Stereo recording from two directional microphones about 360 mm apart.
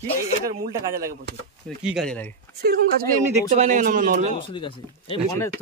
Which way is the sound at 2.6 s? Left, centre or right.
Right.